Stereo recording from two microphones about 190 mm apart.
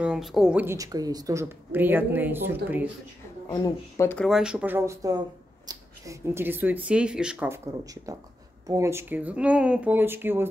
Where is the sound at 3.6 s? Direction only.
15° left (ahead or behind).